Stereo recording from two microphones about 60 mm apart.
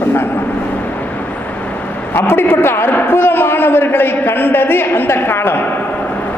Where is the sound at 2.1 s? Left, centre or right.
Left.